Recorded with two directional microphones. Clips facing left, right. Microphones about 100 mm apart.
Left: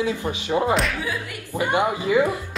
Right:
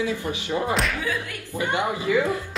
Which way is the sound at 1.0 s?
15° left (ahead or behind).